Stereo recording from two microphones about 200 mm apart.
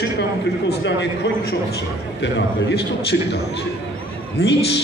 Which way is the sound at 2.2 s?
55° left (ahead or behind).